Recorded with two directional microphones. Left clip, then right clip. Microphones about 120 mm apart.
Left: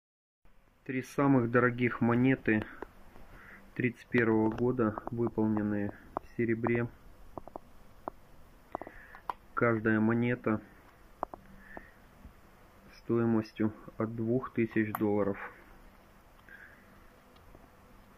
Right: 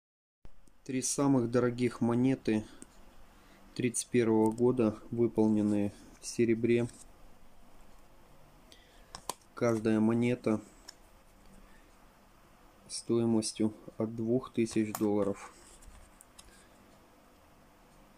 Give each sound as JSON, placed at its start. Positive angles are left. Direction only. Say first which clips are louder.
{"t": 0.8, "sound": "speech", "louder": "left 1 dB", "side_deg": -20}
{"t": 3.7, "sound": "speech", "louder": "even", "side_deg": -30}
{"t": 9.6, "sound": "speech", "louder": "left 1 dB", "side_deg": -30}
{"t": 13.1, "sound": "speech", "louder": "even", "side_deg": -30}
{"t": 14.0, "sound": "speech", "louder": "even", "side_deg": -15}
{"t": 14.4, "sound": "speech", "louder": "left 1 dB", "side_deg": -35}